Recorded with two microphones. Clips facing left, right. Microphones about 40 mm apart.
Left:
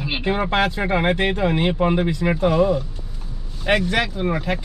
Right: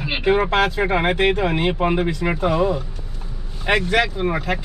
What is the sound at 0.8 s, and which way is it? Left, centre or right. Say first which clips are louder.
Speech: right 2 dB; centre.